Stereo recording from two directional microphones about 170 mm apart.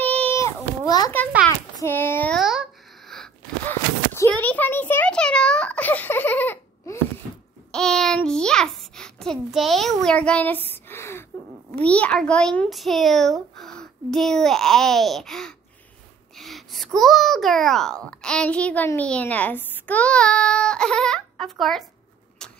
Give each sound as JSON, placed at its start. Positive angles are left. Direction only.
{"t": 0.0, "sound": "a sound", "side_deg": 10}
{"t": 3.6, "sound": "a child's voice", "side_deg": 15}
{"t": 22.4, "sound": "vehicle", "side_deg": 5}